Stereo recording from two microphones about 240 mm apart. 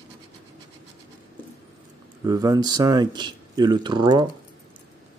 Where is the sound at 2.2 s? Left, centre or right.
Centre.